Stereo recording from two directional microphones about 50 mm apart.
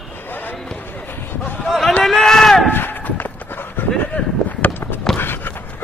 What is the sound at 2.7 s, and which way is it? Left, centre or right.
Run, left.